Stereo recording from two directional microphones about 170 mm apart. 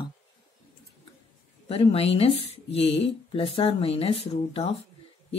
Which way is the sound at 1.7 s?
35° left (ahead or behind).